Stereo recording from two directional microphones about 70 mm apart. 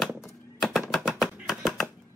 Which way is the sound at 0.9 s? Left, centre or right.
Centre.